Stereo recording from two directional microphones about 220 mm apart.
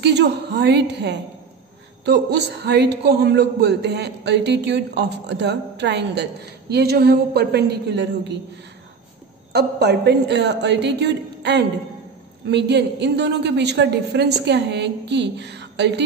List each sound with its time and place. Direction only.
0.0 s a man's voice: 50° right (ahead or behind)
9.5 s a man's voice: 50° right (ahead or behind)